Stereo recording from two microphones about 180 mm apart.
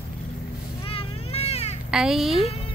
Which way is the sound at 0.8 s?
30° left (ahead or behind).